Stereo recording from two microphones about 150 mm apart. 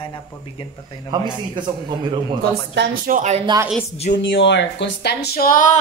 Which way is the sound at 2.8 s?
65° right (ahead or behind).